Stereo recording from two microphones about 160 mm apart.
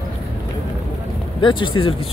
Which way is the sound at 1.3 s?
30° left (ahead or behind).